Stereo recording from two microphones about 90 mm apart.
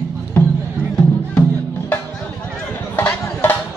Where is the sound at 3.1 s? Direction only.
20° left (ahead or behind).